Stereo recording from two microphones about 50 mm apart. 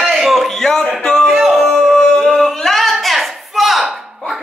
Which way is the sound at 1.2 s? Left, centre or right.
Centre.